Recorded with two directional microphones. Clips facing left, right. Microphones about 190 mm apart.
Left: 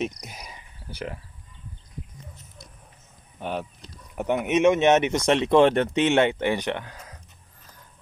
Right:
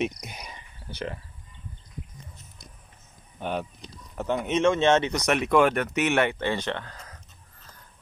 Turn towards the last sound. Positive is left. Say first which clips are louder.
# even
turn(degrees=15)  # may be behind; listen again after turning